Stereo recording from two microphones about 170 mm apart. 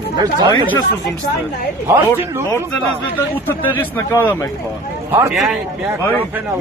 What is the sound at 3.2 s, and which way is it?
A man's voice, 10° left (ahead or behind).